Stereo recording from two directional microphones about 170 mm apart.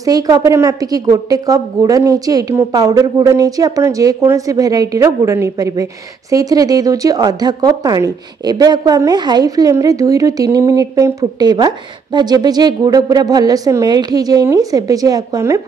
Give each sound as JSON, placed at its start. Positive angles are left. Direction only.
{"t": 0.0, "sound": "speech", "side_deg": -20}